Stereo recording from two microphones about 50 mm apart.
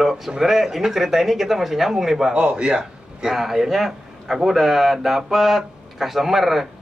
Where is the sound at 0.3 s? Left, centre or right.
Centre.